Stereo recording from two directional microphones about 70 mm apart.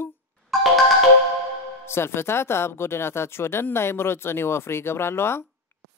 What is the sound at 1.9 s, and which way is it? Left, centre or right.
Speech, left.